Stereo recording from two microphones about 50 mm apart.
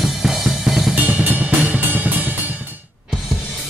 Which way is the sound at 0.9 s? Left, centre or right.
Right.